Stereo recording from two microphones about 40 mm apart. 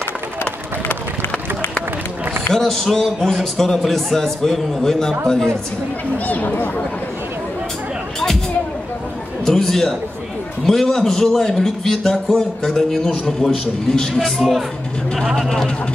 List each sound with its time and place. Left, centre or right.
2.5 s a man's voice: centre
6.2 s speech: left
9.5 s a man's voice: centre
14.4 s speech: centre